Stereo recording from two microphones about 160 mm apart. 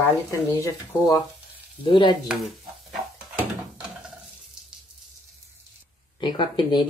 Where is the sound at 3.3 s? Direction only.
5° right (ahead or behind).